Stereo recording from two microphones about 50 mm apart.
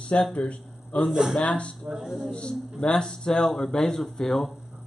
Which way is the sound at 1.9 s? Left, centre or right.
Centre.